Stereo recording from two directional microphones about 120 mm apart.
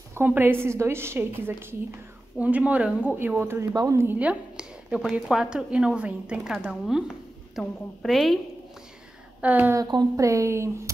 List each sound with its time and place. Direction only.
0.1 s a woman's voice: 15° right (ahead or behind)
4.2 s a woman's voice: 10° right (ahead or behind)
9.4 s a woman's voice: 15° right (ahead or behind)
9.8 s a woman's voice: 35° right (ahead or behind)